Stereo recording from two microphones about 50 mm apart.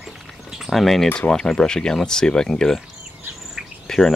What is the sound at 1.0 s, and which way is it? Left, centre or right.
Speech, left.